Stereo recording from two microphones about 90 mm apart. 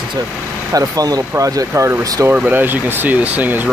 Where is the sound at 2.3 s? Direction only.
20° right (ahead or behind).